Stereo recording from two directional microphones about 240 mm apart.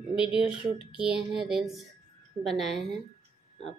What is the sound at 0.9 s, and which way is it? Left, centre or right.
A woman's voice, centre.